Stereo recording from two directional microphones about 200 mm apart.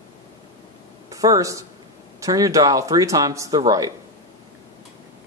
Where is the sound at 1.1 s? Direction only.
15° right (ahead or behind).